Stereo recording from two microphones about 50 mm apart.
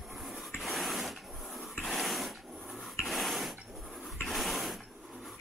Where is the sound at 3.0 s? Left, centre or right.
Centre.